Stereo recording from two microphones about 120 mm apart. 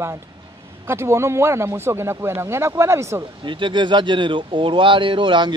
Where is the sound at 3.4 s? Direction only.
40° right (ahead or behind).